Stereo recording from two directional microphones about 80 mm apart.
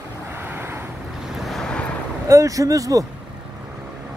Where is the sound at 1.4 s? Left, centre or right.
Centre.